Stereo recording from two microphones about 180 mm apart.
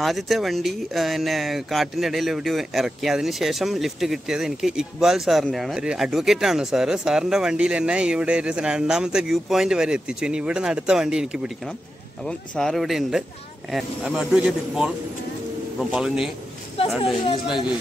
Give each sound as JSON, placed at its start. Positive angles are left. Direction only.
{"t": 0.0, "sound": "speech", "side_deg": 0}